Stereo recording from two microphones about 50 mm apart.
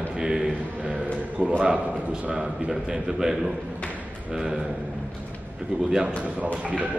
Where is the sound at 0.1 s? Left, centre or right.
Centre.